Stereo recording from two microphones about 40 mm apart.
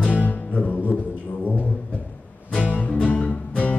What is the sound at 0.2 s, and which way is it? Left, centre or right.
Music, left.